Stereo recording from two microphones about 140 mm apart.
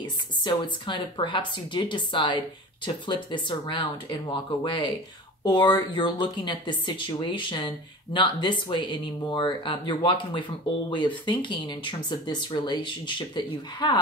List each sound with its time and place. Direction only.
0.0 s speech: 35° left (ahead or behind)